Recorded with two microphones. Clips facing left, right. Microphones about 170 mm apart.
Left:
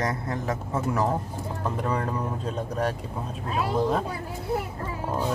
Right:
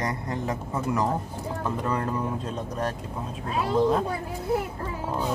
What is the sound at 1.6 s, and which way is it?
Speech, 10° left (ahead or behind).